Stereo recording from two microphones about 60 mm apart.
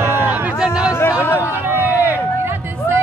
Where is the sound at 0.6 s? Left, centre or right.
Centre.